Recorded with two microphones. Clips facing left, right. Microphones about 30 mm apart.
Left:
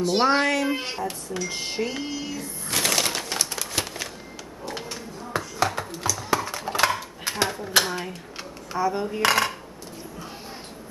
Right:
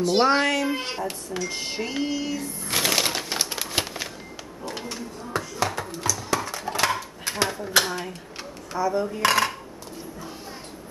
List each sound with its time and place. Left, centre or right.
0.1 s speech: centre
1.5 s speech: centre
2.7 s a sound: centre
3.8 s music: centre
4.6 s a sound: centre
8.7 s coin: centre
9.2 s speech: centre